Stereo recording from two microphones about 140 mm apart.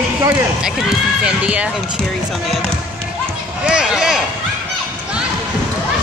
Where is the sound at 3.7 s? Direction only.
5° right (ahead or behind).